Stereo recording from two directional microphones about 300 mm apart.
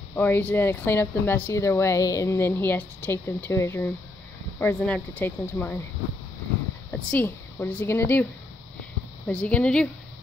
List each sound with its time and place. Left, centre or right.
0.1 s speech: centre
6.9 s speech: centre
9.3 s speech: centre